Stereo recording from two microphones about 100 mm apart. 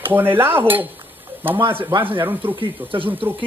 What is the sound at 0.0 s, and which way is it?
Speech, 20° right (ahead or behind).